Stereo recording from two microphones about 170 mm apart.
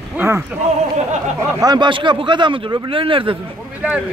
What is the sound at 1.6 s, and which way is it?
A man's voice, 25° right (ahead or behind).